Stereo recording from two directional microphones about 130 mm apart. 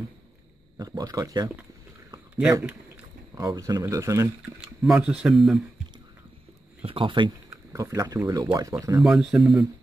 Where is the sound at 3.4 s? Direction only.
25° right (ahead or behind).